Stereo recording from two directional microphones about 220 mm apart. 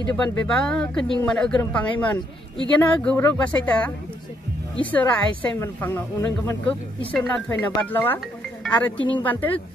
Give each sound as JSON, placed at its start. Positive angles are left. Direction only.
{"t": 0.1, "sound": "a woman's voice", "side_deg": 5}
{"t": 8.9, "sound": "speech", "side_deg": 20}
{"t": 9.2, "sound": "a woman's voice", "side_deg": 10}